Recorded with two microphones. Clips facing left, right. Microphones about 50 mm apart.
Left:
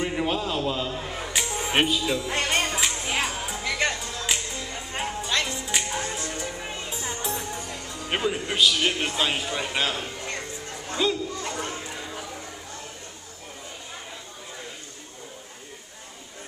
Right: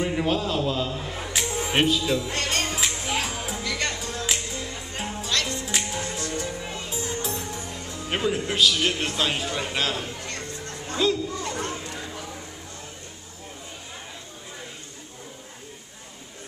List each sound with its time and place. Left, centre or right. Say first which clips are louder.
0.0 s a man's voice: right 2 dB; centre
2.7 s music: even; centre
4.7 s music: left 2 dB; centre
6.1 s music: right 2 dB; left
6.9 s music: right 1 dB; centre
7.9 s a man's voice: right 1 dB; centre
10.2 s music: left 1 dB; centre